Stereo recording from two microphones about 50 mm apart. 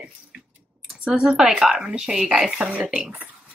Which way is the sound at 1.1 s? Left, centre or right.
Centre.